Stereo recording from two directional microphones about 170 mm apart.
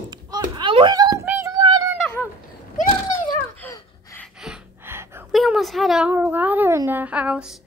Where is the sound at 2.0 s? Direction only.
10° left (ahead or behind).